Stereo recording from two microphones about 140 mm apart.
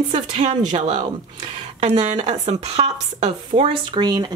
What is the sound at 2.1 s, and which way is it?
Speech, 50° right (ahead or behind).